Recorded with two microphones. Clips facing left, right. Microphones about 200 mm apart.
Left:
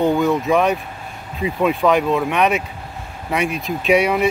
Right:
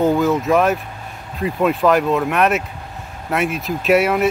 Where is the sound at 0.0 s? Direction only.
Centre (ahead or behind).